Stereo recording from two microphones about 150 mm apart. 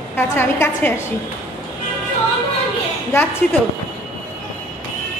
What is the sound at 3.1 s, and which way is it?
Speech, 15° left (ahead or behind).